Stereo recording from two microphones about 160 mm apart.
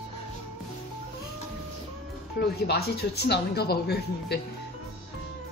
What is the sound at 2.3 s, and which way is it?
Speech, 85° left.